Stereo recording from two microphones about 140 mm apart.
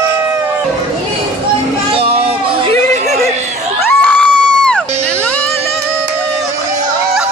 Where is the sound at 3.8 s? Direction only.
10° left (ahead or behind).